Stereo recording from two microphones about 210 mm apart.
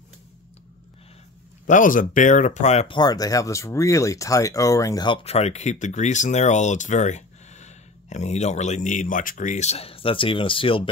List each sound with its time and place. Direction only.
1.7 s speech: 40° left (ahead or behind)